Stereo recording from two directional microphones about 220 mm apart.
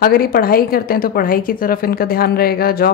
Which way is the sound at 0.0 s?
40° left (ahead or behind).